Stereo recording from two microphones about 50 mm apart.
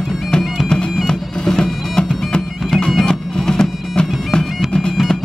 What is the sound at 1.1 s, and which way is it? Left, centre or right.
Bagpipes, centre.